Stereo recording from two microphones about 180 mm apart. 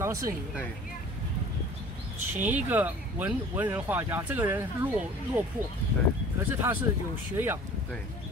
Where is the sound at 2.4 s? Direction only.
10° right (ahead or behind).